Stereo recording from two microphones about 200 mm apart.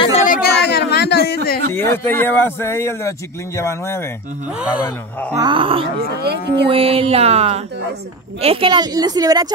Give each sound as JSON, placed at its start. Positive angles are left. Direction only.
{"t": 0.0, "sound": "chatter", "side_deg": 35}
{"t": 0.7, "sound": "a sound", "side_deg": 55}
{"t": 1.8, "sound": "a man's voice", "side_deg": 10}
{"t": 4.6, "sound": "speech", "side_deg": -5}
{"t": 5.3, "sound": "a woman's voice", "side_deg": -20}
{"t": 6.0, "sound": "speech", "side_deg": -55}
{"t": 6.7, "sound": "a woman's voice", "side_deg": -30}